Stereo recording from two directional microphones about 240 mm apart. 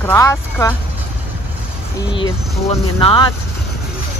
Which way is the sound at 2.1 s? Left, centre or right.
Left.